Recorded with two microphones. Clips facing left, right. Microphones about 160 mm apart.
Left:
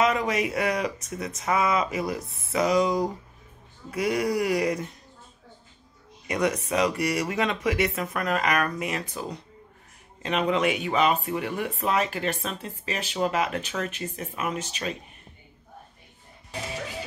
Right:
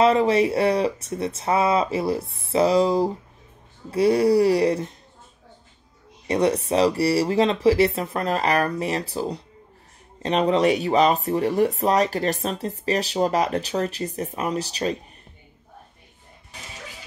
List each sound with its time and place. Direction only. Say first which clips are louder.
0.0 s speech: right 6 dB; 30° right (ahead or behind)
6.2 s speech: right 5 dB; 30° right (ahead or behind)